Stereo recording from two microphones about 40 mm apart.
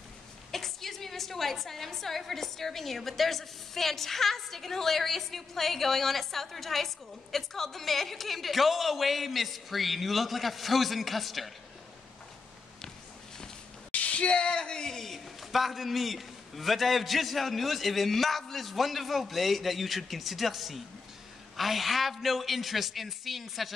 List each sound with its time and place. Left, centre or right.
0.5 s a woman's voice: centre
13.9 s speech: left; by 15.0 s centre
15.0 s a woman's voice: centre